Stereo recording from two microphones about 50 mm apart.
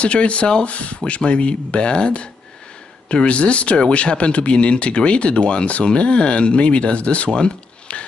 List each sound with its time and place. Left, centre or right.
0.0 s speech: left